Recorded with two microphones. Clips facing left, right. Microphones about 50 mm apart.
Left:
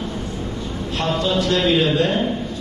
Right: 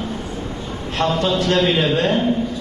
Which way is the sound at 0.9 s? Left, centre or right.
Right.